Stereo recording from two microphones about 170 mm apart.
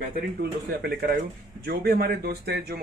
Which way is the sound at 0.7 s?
70° right (ahead or behind).